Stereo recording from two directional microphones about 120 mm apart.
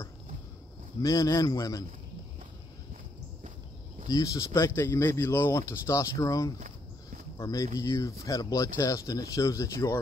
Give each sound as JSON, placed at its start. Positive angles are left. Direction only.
{"t": 1.0, "sound": "speech", "side_deg": 30}
{"t": 4.1, "sound": "speech", "side_deg": 30}